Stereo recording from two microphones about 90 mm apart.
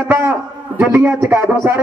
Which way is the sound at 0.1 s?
20° right (ahead or behind).